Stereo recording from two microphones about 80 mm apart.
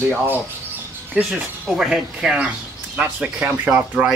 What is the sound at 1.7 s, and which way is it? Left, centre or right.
Speech, centre.